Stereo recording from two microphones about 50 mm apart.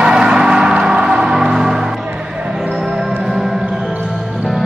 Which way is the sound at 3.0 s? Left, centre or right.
Centre.